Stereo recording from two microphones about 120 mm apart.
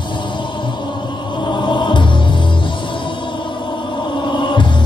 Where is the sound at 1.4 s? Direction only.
40° left (ahead or behind).